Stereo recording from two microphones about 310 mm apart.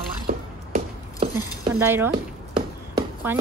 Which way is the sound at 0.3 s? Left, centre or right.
Right.